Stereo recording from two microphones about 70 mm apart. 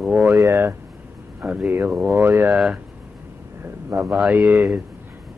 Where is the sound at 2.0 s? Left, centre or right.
Right.